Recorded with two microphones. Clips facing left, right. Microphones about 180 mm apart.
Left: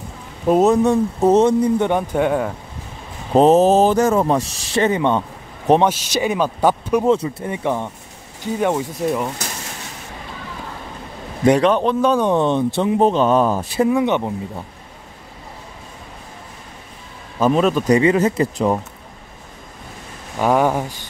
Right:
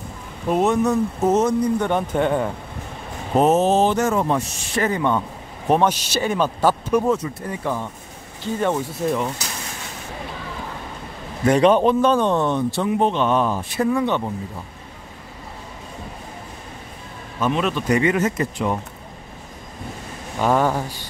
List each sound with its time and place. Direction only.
0.5 s speech: 40° left (ahead or behind)
1.9 s speech: 10° left (ahead or behind)
3.3 s speech: 35° left (ahead or behind); by 7.1 s 15° left (ahead or behind)
7.1 s speech: 25° left (ahead or behind); by 9.3 s 5° left (ahead or behind)
11.5 s a man's voice: 5° right (ahead or behind)
12.0 s speech: 10° left (ahead or behind)
13.0 s speech: 40° left (ahead or behind)
13.7 s speech: 20° left (ahead or behind)
17.4 s speech: 40° left (ahead or behind)
20.3 s speech: 10° left (ahead or behind)